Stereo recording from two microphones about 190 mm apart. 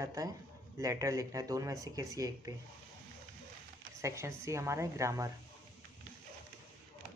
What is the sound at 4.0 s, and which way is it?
Speech, 15° right (ahead or behind).